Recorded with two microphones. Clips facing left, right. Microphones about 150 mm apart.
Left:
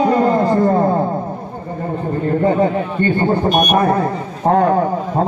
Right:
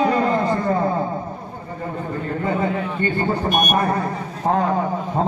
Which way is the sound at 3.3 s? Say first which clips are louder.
Left 5 dB; 50° left (ahead or behind).